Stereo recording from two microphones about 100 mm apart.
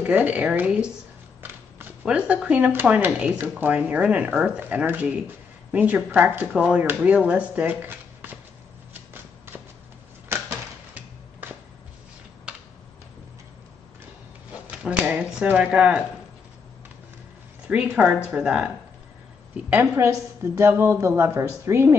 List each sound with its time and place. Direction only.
0.0 s speech: 15° right (ahead or behind)
1.4 s a sound: 20° right (ahead or behind)
2.0 s speech: 10° right (ahead or behind)
8.9 s shuffling cards: 20° right (ahead or behind)
14.7 s speech: 10° right (ahead or behind)
17.6 s speech: 15° right (ahead or behind)
20.5 s speech: 25° right (ahead or behind)